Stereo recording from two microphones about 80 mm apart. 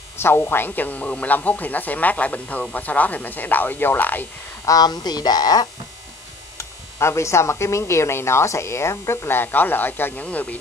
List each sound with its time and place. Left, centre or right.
0.2 s speech: left
4.6 s speech: left
6.6 s speech: left; by 10.6 s centre